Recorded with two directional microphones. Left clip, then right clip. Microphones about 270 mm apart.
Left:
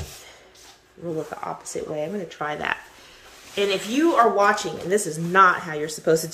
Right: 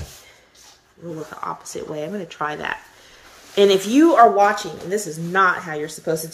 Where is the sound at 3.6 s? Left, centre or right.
Right.